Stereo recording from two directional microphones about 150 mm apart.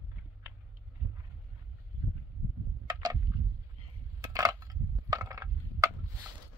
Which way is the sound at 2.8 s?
30° right (ahead or behind).